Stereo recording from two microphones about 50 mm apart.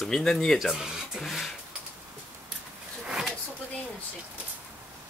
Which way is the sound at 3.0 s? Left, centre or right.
Centre.